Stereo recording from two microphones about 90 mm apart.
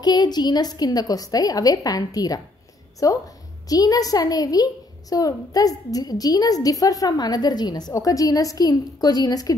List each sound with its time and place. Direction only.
0.0 s a woman's voice: 50° left (ahead or behind)